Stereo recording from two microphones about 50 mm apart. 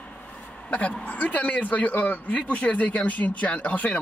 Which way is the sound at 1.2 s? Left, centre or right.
Left.